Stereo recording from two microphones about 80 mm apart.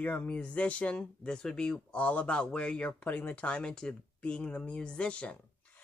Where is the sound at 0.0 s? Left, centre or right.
Centre.